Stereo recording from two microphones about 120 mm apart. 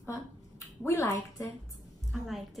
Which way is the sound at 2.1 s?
Centre (ahead or behind).